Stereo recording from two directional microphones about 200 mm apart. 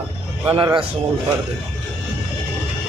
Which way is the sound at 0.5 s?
20° right (ahead or behind).